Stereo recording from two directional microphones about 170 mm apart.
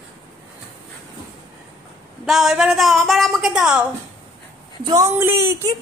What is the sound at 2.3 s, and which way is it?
A woman's voice, centre (ahead or behind).